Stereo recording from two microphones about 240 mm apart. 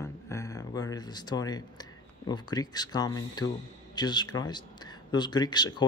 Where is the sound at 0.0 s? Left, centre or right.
Centre.